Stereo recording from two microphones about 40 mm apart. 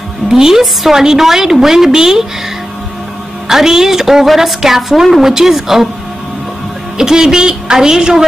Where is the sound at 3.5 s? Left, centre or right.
Centre.